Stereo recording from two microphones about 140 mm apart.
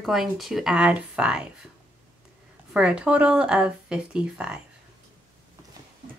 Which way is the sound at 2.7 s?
5° right (ahead or behind).